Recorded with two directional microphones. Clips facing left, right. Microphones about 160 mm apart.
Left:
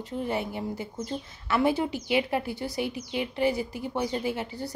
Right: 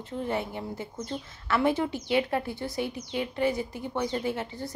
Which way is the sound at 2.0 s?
10° left (ahead or behind).